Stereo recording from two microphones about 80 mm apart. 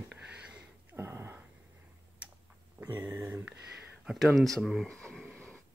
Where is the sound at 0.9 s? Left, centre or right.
Right.